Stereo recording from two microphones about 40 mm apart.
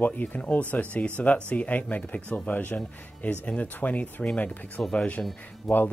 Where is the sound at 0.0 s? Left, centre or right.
Left.